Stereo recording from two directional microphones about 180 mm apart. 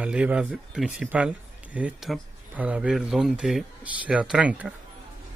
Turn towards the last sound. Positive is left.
turn(degrees=-5)  # may be behind; listen again after turning